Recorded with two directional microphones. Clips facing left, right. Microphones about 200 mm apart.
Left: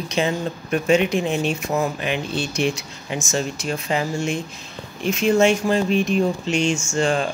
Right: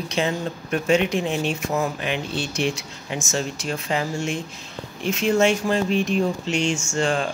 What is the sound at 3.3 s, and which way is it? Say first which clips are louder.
Speech: left 2 dB; 15° left (ahead or behind).